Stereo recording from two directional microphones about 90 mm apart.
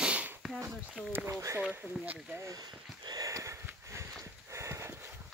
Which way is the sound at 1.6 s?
15° right (ahead or behind).